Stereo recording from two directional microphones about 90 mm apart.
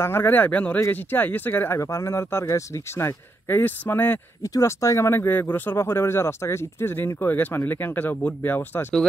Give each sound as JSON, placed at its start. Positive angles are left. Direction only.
{"t": 0.0, "sound": "speech", "side_deg": 25}
{"t": 1.8, "sound": "speech", "side_deg": 35}
{"t": 4.4, "sound": "speech", "side_deg": 35}